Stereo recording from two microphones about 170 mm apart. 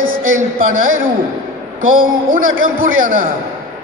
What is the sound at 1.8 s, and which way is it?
A man's voice, 50° right (ahead or behind).